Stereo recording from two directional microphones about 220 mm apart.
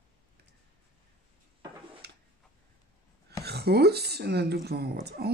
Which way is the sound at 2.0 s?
50° right (ahead or behind).